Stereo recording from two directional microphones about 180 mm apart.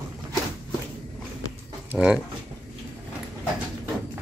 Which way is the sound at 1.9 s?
Centre (ahead or behind).